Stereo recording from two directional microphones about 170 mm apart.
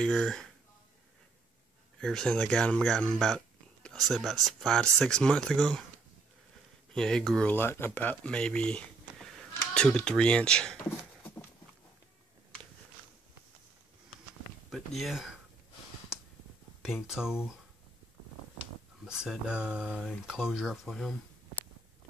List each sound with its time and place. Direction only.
0.0 s speech: 5° left (ahead or behind)
2.0 s speech: 5° left (ahead or behind)
6.9 s speech: 5° left (ahead or behind)
14.7 s speech: centre (ahead or behind)
16.8 s speech: 5° right (ahead or behind)
19.0 s speech: 5° right (ahead or behind)